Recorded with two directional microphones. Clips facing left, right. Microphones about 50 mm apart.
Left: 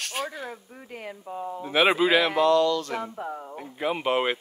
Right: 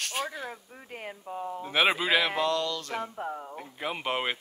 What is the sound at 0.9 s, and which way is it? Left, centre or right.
Speech, right.